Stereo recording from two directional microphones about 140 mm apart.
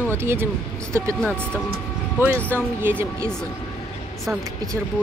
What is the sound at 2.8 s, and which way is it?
Speech, 15° right (ahead or behind).